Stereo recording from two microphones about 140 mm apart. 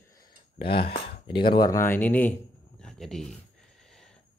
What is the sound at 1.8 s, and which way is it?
Speech, 15° left (ahead or behind).